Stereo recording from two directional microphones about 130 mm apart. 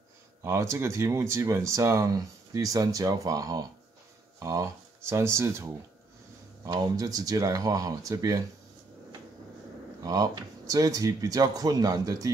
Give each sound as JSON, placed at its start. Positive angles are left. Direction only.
{"t": 0.4, "sound": "speech", "side_deg": -20}
{"t": 10.0, "sound": "speech", "side_deg": -30}